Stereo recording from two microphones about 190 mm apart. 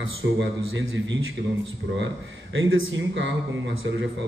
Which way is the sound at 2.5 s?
90° right.